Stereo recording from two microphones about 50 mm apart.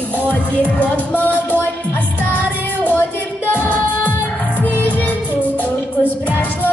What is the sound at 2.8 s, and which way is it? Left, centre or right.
Music, left.